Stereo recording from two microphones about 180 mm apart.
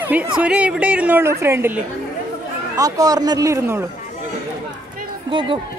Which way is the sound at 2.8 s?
20° right (ahead or behind).